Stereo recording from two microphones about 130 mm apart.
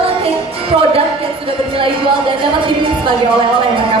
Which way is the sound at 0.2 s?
50° right (ahead or behind).